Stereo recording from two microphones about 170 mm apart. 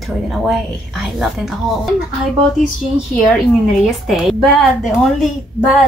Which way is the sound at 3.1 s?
Centre (ahead or behind).